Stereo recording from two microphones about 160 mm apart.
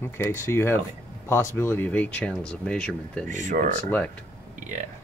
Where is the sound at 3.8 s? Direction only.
10° left (ahead or behind).